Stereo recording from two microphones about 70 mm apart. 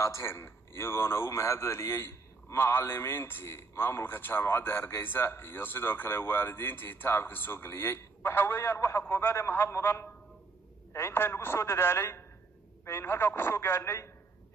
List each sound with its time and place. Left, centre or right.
0.0 s a man's voice: left